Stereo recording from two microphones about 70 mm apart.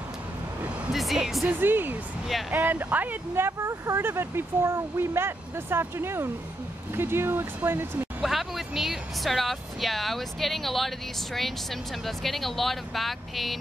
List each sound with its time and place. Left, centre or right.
0.9 s speech: centre
1.5 s speech: right
8.2 s speech: centre